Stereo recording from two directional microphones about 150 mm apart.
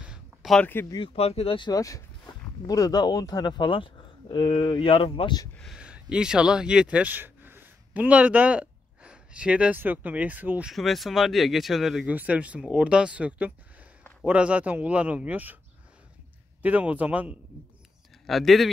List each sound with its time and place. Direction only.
0.0 s a sound: 5° right (ahead or behind)
0.8 s speech: 30° left (ahead or behind)
1.1 s speech: 40° left (ahead or behind)
1.7 s speech: 20° left (ahead or behind)
5.6 s speech: 5° right (ahead or behind)
10.7 s speech: centre (ahead or behind)
16.6 s speech: 10° right (ahead or behind)
18.2 s speech: centre (ahead or behind)